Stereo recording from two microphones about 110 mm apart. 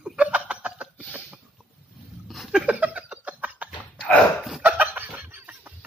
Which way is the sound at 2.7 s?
10° right (ahead or behind).